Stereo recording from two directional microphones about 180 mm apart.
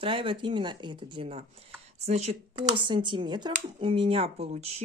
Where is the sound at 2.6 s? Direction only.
25° right (ahead or behind).